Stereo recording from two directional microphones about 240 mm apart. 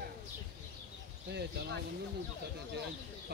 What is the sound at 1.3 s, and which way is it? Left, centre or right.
Speech, right.